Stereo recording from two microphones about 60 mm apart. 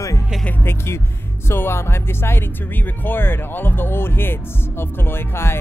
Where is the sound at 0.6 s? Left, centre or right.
Left.